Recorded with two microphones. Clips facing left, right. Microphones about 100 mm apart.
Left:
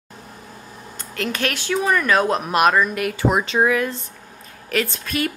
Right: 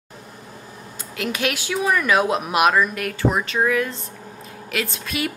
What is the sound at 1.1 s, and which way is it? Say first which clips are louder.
A woman's voice: even; 5° right (ahead or behind).